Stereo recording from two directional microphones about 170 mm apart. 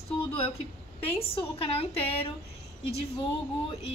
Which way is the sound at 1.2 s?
35° left (ahead or behind).